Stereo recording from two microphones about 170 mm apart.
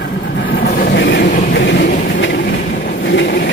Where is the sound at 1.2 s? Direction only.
50° left (ahead or behind).